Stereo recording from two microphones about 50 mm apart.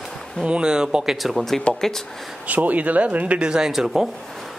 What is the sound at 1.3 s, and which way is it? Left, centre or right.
Speech, centre.